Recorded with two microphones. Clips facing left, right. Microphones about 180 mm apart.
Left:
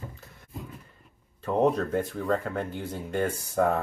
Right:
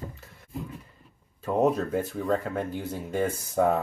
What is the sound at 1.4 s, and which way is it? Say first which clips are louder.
Speech: even; 5° right (ahead or behind).